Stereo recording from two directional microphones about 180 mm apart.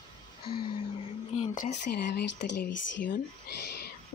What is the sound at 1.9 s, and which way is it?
Speech, 65° left (ahead or behind).